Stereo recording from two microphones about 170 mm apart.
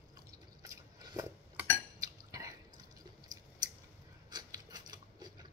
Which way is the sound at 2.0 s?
20° right (ahead or behind).